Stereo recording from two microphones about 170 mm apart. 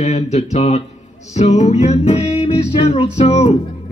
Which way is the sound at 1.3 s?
40° left (ahead or behind).